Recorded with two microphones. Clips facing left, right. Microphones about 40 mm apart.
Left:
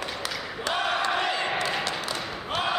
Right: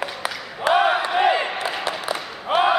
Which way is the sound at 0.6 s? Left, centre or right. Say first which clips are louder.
Right 8 dB; right.